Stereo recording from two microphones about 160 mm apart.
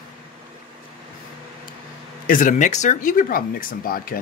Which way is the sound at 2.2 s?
55° left (ahead or behind).